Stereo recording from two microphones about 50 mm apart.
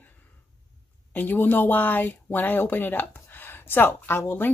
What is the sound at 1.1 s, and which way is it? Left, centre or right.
Speech, left.